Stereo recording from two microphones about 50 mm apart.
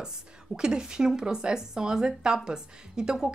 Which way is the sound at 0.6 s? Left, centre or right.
Centre.